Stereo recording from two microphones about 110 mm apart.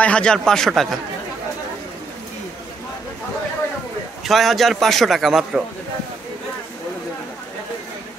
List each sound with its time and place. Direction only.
0.0 s a man's voice: 10° left (ahead or behind)
4.2 s a man's voice: centre (ahead or behind)